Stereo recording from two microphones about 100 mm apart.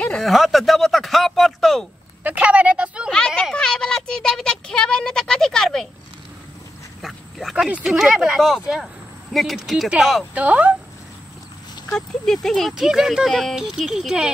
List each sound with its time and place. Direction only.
0.0 s speech: 5° left (ahead or behind)
2.2 s speech: 15° right (ahead or behind)
3.1 s speech: 10° left (ahead or behind)
7.0 s pig: centre (ahead or behind)
7.5 s speech: 10° right (ahead or behind)
10.3 s speech: 15° right (ahead or behind)
12.3 s speech: centre (ahead or behind)